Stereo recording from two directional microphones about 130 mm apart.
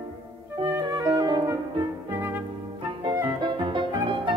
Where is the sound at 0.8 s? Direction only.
30° right (ahead or behind).